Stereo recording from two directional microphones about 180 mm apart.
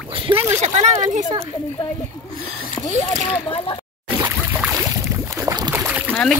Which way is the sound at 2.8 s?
20° left (ahead or behind).